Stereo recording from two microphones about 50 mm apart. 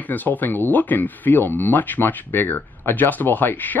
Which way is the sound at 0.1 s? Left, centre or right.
Left.